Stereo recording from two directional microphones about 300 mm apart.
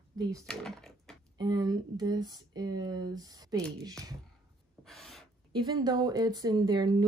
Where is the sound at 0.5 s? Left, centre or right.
Centre.